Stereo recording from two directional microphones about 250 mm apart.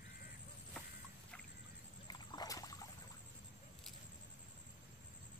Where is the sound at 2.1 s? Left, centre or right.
Centre.